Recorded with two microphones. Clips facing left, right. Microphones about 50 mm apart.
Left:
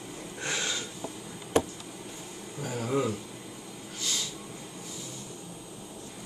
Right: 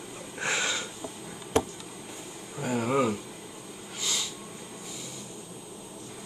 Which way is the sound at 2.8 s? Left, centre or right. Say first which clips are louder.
Right 2 dB; right.